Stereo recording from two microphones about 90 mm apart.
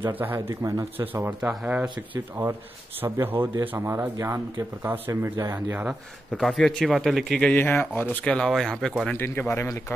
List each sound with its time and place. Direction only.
0.0 s speech: 25° right (ahead or behind)
0.9 s speech: 20° right (ahead or behind)
1.4 s speech: 10° right (ahead or behind)
2.4 s speech: 35° right (ahead or behind)
4.8 s speech: 20° right (ahead or behind)
6.3 s speech: 5° left (ahead or behind)
6.9 s speech: centre (ahead or behind)
7.5 s speech: 20° left (ahead or behind); by 8.9 s 5° left (ahead or behind)
9.1 s speech: 25° left (ahead or behind)